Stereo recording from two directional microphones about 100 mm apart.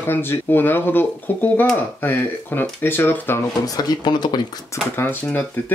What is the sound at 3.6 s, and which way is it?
Speech, 40° left (ahead or behind).